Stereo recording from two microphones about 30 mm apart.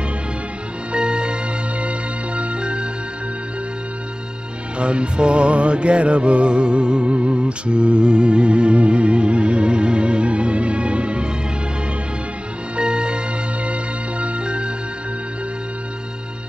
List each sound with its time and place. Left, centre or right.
0.9 s music: right
4.7 s music: right
12.7 s music: right
14.2 s music: right